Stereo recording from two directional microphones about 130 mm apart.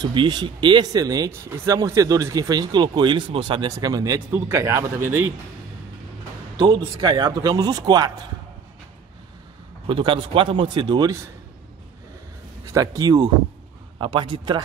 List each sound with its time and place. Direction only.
0.0 s speech: 35° right (ahead or behind); by 5.3 s 20° right (ahead or behind)
6.6 s speech: 40° right (ahead or behind)
9.8 s speech: 40° right (ahead or behind)
12.6 s speech: 25° right (ahead or behind)
13.9 s speech: 40° right (ahead or behind)